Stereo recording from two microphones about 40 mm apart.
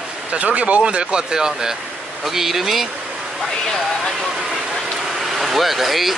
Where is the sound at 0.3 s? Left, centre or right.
Right; by 2.9 s centre.